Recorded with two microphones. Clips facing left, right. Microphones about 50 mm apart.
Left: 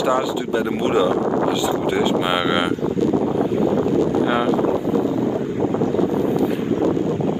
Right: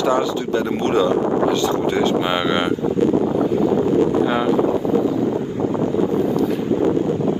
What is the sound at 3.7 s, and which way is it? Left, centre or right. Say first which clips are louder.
Boat: right 2 dB; right.